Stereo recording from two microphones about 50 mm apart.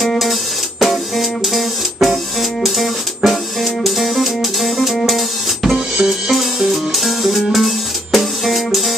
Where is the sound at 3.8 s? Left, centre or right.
Centre.